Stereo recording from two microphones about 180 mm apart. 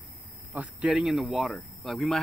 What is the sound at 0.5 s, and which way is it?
Speech, 5° right (ahead or behind).